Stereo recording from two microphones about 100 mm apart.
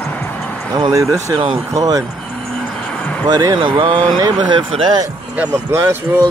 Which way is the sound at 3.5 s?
55° right (ahead or behind).